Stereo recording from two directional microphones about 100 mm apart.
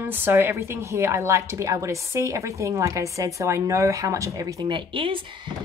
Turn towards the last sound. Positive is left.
turn(degrees=-60)  # may be behind; listen again after turning